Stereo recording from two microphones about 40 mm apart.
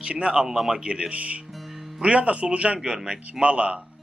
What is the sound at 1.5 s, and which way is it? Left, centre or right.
Music, centre.